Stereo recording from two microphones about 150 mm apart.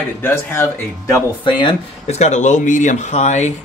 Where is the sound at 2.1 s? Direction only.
50° left (ahead or behind).